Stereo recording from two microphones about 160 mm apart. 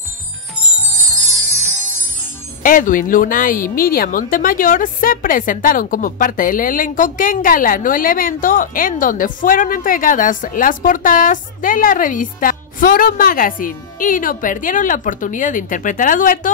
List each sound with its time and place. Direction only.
2.6 s a woman's voice: 60° left (ahead or behind)